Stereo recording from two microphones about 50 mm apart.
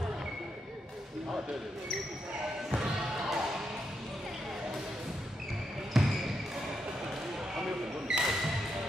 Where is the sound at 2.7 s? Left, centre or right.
Centre.